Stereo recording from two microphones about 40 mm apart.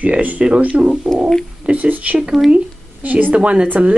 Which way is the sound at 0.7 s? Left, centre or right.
Right.